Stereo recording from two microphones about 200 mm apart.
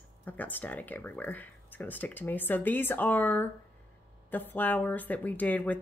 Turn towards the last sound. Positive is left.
turn(degrees=10)  # may be behind; listen again after turning